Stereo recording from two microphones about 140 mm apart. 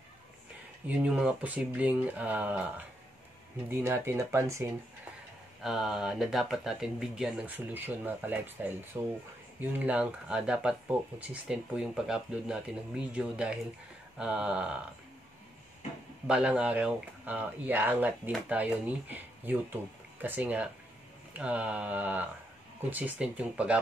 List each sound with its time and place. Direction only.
0.8 s speech: 10° right (ahead or behind)
3.7 s speech: 15° right (ahead or behind)
5.6 s speech: centre (ahead or behind)
16.3 s speech: 10° right (ahead or behind)